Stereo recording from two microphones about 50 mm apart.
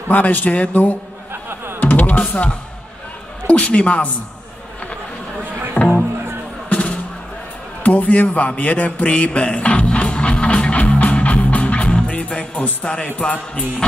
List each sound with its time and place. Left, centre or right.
0.1 s speech: left
1.3 s music: right
1.8 s music: left
3.4 s a man's voice: left
5.8 s music: left